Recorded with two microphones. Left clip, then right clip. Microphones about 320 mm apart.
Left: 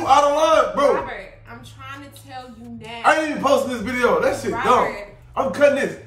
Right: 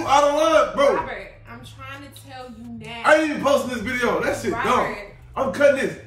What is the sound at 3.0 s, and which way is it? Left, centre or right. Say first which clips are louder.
A man's voice: even; centre.